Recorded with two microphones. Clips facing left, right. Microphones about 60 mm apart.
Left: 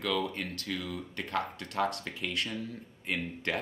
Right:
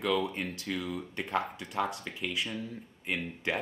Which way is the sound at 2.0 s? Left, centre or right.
Centre.